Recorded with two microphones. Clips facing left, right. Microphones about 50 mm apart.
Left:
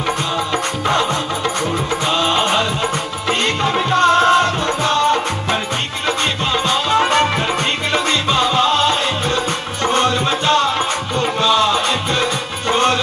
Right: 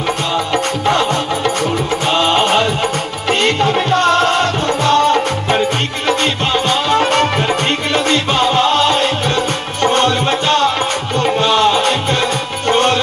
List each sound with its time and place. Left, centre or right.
0.5 s music: right